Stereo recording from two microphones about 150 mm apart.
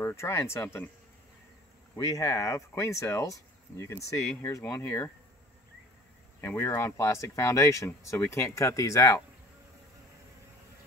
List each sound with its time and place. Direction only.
0.0 s speech: 15° left (ahead or behind)
2.0 s speech: 20° left (ahead or behind)
6.4 s speech: 15° left (ahead or behind)